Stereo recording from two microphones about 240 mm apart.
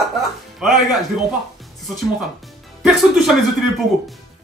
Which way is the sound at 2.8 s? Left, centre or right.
Centre.